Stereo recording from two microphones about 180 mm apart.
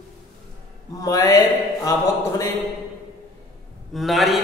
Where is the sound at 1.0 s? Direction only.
20° left (ahead or behind).